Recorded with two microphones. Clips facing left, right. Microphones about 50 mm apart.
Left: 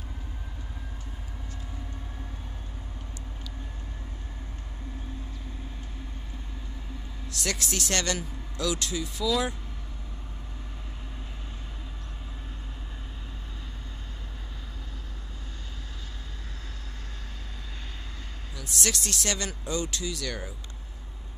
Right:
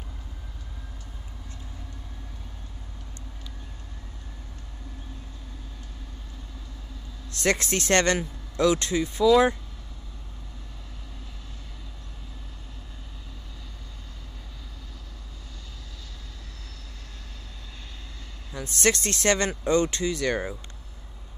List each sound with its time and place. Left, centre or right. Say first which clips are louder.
7.4 s speech: right 7 dB; right
9.2 s speech: right 9 dB; right
18.5 s speech: right 7 dB; right